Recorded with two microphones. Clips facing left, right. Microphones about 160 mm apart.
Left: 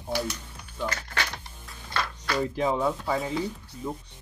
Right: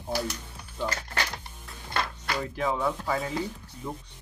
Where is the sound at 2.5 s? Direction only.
20° left (ahead or behind).